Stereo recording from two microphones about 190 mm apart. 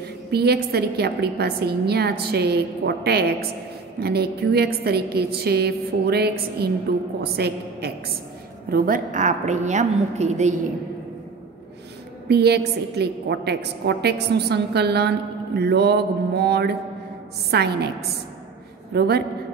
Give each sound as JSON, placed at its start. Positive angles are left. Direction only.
{"t": 0.3, "sound": "a woman's voice", "side_deg": -55}
{"t": 12.3, "sound": "a woman's voice", "side_deg": -60}
{"t": 18.9, "sound": "a woman's voice", "side_deg": -55}